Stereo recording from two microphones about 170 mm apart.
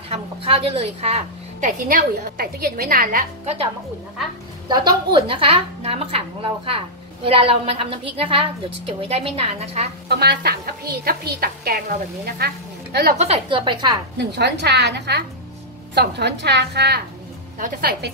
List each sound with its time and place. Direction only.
0.1 s a woman's voice: 35° right (ahead or behind); by 3.3 s 55° right (ahead or behind)
4.6 s a woman's voice: 25° right (ahead or behind)
10.0 s a woman's voice: 70° right (ahead or behind)
13.2 s a woman's voice: 35° right (ahead or behind)
14.1 s a woman's voice: 80° right
17.6 s a woman's voice: 65° right (ahead or behind)